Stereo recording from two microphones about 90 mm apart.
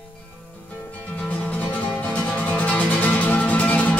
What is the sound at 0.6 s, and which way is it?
Music, 15° left (ahead or behind).